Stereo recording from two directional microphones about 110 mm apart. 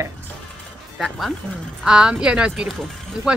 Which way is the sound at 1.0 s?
Centre (ahead or behind).